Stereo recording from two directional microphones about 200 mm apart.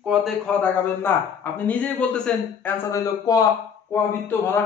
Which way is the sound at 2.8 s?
15° left (ahead or behind).